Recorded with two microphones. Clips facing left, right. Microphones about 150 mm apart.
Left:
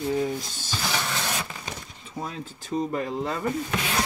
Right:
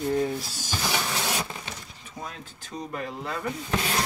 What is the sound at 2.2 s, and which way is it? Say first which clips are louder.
Speech: left 5 dB; 35° left (ahead or behind).